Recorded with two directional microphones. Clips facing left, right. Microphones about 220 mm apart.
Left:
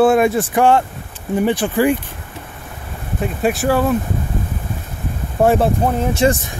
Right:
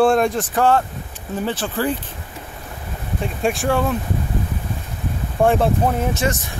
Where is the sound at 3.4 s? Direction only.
5° left (ahead or behind).